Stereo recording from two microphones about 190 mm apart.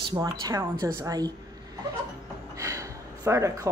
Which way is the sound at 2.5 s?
15° right (ahead or behind).